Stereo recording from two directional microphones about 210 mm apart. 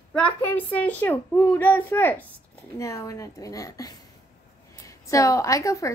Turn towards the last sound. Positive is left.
turn(degrees=15)  # may be behind; listen again after turning